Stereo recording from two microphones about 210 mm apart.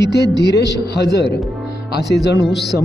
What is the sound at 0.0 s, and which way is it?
Speech, 50° left (ahead or behind).